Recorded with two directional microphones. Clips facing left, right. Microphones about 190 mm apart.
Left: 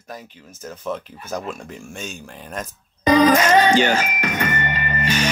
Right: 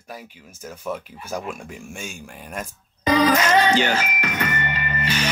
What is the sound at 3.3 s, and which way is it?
Speech, 40° left (ahead or behind).